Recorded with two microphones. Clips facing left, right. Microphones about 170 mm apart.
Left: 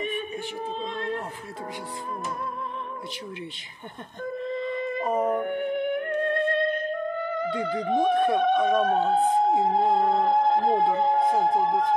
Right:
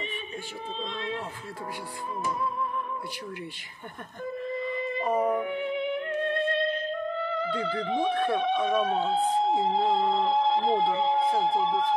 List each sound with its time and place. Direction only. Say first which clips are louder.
2.0 s speech: right 4 dB; 50° left (ahead or behind)
5.2 s music: left 2 dB; 50° left (ahead or behind)
8.1 s speech: left 6 dB; 15° left (ahead or behind)
8.6 s speech: left 4 dB; 50° left (ahead or behind)